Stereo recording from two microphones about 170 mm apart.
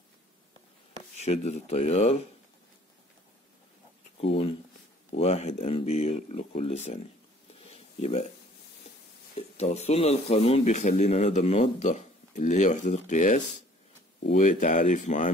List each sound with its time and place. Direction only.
1.2 s speech: 40° left (ahead or behind)
4.2 s speech: 35° left (ahead or behind)
7.5 s a sound: 35° left (ahead or behind)
9.3 s a man's voice: 40° left (ahead or behind)